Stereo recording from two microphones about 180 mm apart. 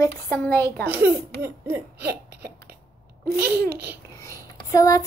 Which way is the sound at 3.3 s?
10° right (ahead or behind).